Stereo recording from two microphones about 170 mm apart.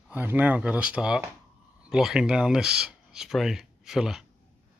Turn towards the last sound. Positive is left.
turn(degrees=-5)  # may be behind; listen again after turning